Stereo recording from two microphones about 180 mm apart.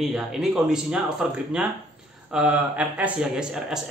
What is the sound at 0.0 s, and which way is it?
Speech, centre (ahead or behind).